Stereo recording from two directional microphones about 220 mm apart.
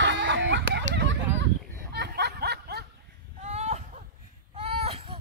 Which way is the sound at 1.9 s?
50° right (ahead or behind).